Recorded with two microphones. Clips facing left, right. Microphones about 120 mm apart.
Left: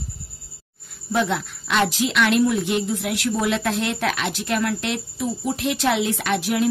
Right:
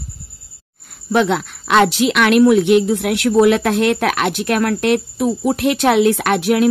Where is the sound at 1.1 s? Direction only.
75° right (ahead or behind).